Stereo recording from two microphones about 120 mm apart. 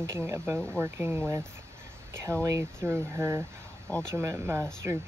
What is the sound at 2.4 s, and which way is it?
Speech, 25° right (ahead or behind).